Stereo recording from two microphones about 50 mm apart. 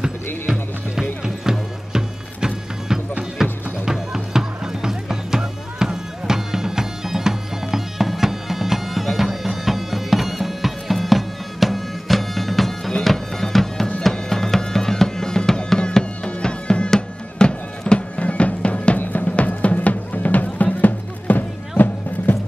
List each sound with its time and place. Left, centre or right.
0.0 s music: centre; by 22.4 s left